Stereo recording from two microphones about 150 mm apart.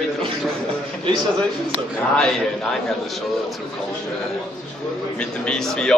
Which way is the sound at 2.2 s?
5° left (ahead or behind).